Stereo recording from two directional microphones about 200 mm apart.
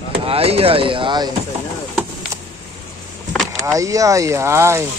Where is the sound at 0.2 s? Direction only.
30° right (ahead or behind).